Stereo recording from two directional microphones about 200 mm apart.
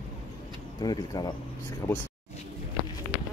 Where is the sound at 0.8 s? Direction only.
20° left (ahead or behind).